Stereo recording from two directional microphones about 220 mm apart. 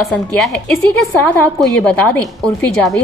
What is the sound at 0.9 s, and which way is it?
A woman's voice, 5° left (ahead or behind).